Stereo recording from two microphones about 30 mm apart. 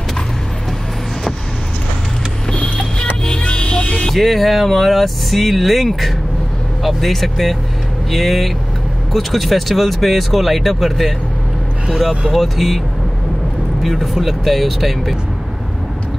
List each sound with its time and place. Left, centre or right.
2.5 s vehicle: left
4.1 s speech: centre
12.3 s speech: centre
13.8 s speech: centre